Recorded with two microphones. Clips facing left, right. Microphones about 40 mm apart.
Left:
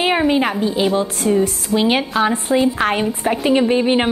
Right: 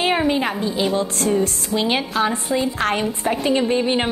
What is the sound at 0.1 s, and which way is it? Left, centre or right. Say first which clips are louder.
A woman's voice: left 3 dB; centre.